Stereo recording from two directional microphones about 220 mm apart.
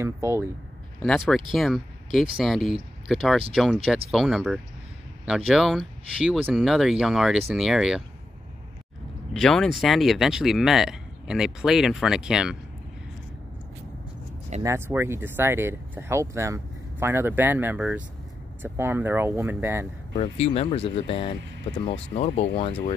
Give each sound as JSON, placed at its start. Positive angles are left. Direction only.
{"t": 0.0, "sound": "speech", "side_deg": -10}
{"t": 1.0, "sound": "speech", "side_deg": 0}
{"t": 9.3, "sound": "speech", "side_deg": 0}
{"t": 14.6, "sound": "speech", "side_deg": -10}
{"t": 20.2, "sound": "speech", "side_deg": 30}